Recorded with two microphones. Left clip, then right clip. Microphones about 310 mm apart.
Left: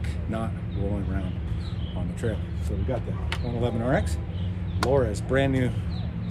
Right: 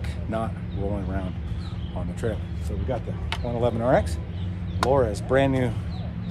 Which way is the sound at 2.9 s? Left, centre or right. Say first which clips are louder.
Right 2 dB; centre.